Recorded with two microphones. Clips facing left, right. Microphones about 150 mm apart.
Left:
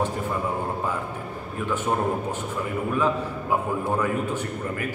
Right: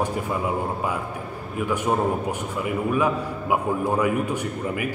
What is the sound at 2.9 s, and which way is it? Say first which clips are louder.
A man's voice: left 1 dB; 10° right (ahead or behind).